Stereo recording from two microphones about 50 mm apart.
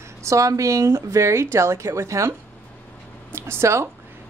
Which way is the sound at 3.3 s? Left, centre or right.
Right.